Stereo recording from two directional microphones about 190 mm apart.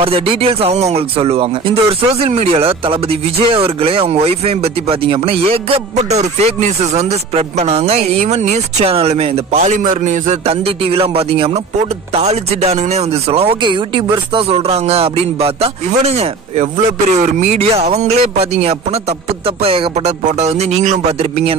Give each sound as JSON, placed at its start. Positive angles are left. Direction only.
{"t": 0.0, "sound": "speech", "side_deg": -30}
{"t": 19.4, "sound": "a sound", "side_deg": -30}
{"t": 20.2, "sound": "speech", "side_deg": -35}